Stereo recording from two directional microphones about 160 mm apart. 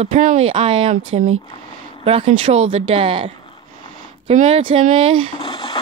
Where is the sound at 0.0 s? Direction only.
55° right (ahead or behind).